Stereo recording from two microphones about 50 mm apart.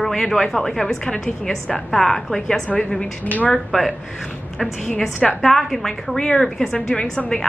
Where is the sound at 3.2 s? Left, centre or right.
Left.